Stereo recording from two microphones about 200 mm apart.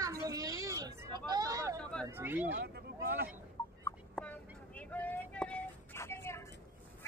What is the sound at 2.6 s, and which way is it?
Speech, 55° right (ahead or behind).